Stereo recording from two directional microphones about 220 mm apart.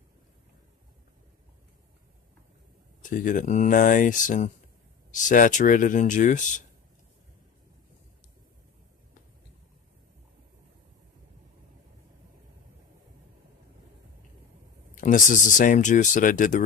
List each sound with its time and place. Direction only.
3.0 s speech: 35° left (ahead or behind)
15.0 s speech: 35° left (ahead or behind)